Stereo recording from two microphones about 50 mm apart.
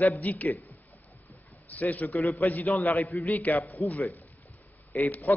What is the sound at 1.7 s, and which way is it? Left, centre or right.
A man's voice, left.